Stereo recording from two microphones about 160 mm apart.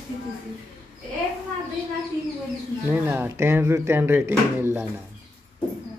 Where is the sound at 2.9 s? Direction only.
15° right (ahead or behind).